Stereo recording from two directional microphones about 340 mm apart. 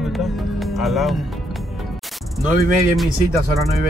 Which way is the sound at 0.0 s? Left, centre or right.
Centre.